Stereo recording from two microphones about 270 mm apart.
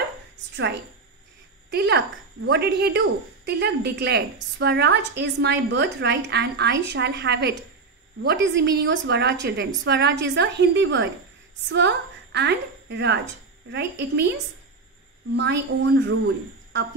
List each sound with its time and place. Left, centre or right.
1.7 s a woman's voice: right
15.3 s speech: right